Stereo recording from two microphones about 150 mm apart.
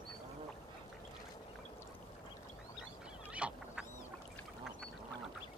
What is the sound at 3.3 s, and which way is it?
Goose, 10° right (ahead or behind).